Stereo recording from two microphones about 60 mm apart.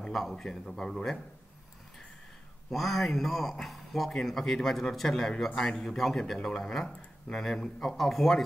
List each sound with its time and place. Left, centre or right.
0.1 s a man's voice: centre
2.7 s a man's voice: centre
6.9 s speech: centre
7.4 s a man's voice: centre